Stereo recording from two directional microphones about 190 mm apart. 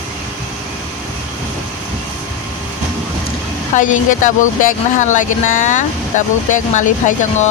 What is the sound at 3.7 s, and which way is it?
Speech, 40° left (ahead or behind).